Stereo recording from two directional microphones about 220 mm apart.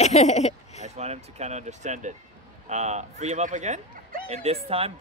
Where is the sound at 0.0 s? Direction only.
30° left (ahead or behind).